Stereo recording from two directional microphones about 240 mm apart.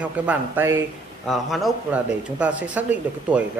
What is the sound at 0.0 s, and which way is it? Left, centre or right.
Speech, centre.